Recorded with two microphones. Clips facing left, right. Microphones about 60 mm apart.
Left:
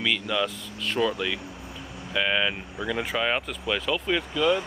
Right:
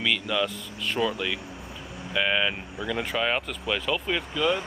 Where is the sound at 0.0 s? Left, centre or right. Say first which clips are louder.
Even; centre.